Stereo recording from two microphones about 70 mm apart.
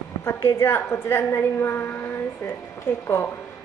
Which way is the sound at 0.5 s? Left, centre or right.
Left.